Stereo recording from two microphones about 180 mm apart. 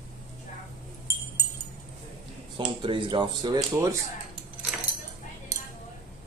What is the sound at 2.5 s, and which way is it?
Speech, 25° right (ahead or behind).